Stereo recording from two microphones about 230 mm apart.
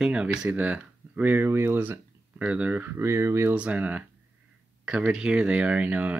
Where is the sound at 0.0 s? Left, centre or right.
Centre.